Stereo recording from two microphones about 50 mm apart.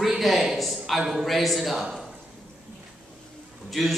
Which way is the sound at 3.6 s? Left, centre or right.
Centre.